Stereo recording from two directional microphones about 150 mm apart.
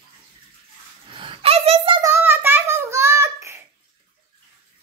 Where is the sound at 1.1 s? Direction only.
35° right (ahead or behind).